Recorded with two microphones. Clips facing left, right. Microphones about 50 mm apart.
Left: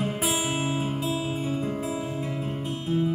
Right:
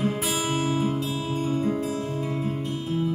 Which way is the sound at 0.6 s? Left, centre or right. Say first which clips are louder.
Right 3 dB; left.